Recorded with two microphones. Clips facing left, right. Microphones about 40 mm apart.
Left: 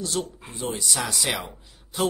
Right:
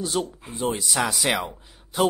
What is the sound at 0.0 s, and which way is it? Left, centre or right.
A man's voice, centre.